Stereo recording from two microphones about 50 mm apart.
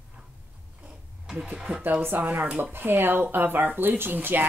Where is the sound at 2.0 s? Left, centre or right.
Right.